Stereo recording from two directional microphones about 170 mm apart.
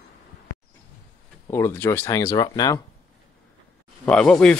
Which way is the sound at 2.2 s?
25° left (ahead or behind).